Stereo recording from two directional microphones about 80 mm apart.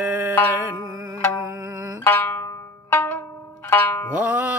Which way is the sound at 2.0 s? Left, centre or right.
Left.